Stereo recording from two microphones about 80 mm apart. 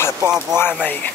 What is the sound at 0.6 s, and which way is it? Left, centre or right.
Speech, left.